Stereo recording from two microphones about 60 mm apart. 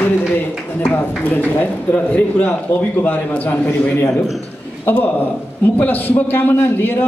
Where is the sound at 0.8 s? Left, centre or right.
Left.